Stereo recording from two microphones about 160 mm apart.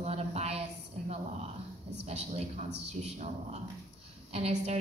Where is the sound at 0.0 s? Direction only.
40° right (ahead or behind).